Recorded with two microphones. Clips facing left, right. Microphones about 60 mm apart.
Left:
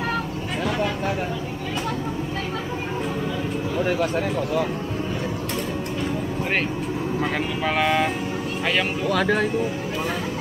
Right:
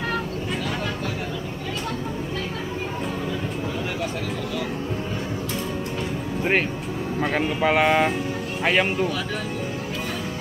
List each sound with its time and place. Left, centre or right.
7.2 s speech: centre
7.6 s speech: centre
9.1 s speech: left